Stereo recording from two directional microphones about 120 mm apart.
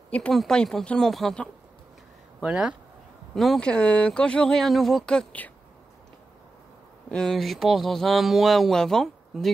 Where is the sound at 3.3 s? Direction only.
5° left (ahead or behind).